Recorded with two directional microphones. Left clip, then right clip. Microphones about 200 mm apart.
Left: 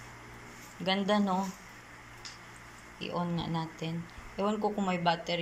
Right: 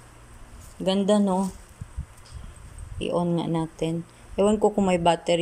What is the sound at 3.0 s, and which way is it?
Speech, 35° right (ahead or behind).